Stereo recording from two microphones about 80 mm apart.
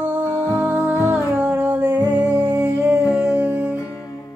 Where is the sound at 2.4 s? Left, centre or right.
Centre.